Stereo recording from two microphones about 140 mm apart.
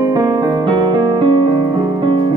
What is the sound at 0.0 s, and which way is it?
Music, 30° right (ahead or behind).